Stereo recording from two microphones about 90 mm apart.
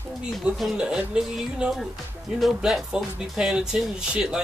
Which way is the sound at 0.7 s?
10° right (ahead or behind).